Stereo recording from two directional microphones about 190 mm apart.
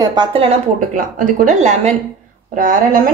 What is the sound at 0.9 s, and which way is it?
Speech, 40° right (ahead or behind).